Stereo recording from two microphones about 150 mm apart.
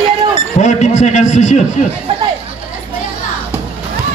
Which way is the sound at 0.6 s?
50° left (ahead or behind).